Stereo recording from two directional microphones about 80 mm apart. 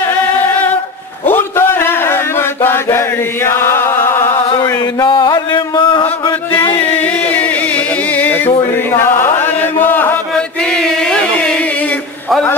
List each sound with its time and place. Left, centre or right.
1.2 s chant: left
4.6 s mantra: left
5.0 s a sound: left
6.8 s music: left
10.6 s chant: centre